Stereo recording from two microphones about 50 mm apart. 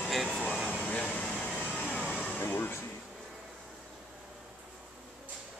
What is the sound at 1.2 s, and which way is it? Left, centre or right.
Air conditioning, centre.